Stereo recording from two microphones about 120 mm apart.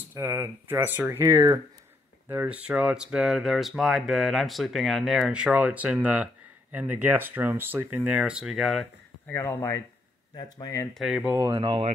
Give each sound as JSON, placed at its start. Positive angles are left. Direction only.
{"t": 0.1, "sound": "speech", "side_deg": -20}
{"t": 2.2, "sound": "speech", "side_deg": -15}
{"t": 9.3, "sound": "speech", "side_deg": 20}
{"t": 11.0, "sound": "speech", "side_deg": -5}
{"t": 11.2, "sound": "speech", "side_deg": -25}
{"t": 11.5, "sound": "speech", "side_deg": -40}